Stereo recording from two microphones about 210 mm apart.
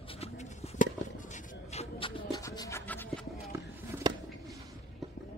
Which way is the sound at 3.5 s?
15° right (ahead or behind).